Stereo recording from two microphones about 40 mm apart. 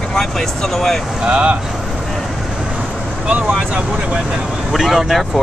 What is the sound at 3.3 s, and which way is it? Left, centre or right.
Speech, right.